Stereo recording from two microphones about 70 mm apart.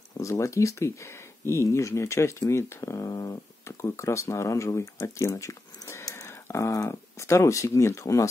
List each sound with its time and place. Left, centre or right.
0.2 s speech: left